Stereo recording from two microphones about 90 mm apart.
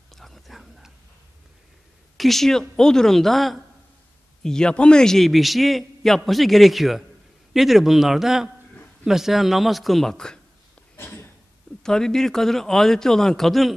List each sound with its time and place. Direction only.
0.1 s whispering: centre (ahead or behind)
2.1 s a man's voice: centre (ahead or behind)
11.0 s a sound: 25° left (ahead or behind)
11.8 s a man's voice: 5° left (ahead or behind)